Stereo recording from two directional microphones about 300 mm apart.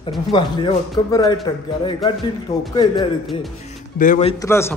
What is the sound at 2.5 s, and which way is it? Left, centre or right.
Speech, centre.